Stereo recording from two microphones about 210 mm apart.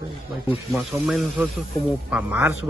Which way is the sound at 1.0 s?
Centre (ahead or behind).